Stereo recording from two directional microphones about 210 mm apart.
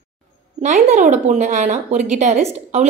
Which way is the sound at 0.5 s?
35° right (ahead or behind).